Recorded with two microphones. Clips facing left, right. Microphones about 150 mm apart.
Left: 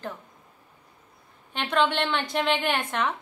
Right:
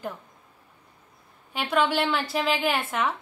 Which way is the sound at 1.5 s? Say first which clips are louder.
Even; 5° right (ahead or behind).